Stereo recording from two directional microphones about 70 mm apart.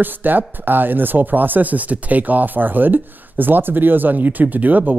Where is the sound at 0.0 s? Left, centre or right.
Right.